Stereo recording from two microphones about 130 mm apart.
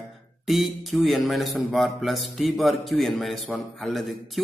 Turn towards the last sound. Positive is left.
turn(degrees=0)  # may be behind; listen again after turning